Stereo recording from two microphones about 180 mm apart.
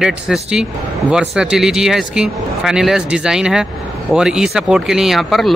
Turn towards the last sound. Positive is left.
turn(degrees=0)  # may be behind; listen again after turning